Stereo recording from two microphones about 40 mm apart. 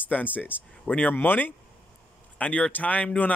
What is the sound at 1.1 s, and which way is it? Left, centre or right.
Speech, left.